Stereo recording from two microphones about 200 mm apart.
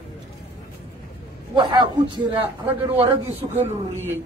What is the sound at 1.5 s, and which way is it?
A man's voice, 20° right (ahead or behind).